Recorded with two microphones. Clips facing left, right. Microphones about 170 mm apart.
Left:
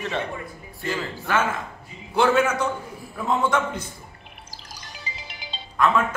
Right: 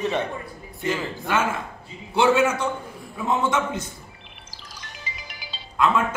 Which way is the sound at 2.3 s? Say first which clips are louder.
Right 2 dB; 10° right (ahead or behind).